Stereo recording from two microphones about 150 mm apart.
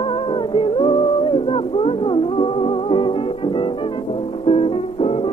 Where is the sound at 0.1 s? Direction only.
35° left (ahead or behind).